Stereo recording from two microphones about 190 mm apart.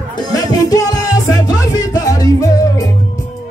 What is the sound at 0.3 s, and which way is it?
Music, 20° left (ahead or behind).